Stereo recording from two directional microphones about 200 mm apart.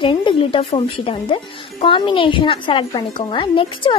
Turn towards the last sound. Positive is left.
turn(degrees=25)  # may be behind; listen again after turning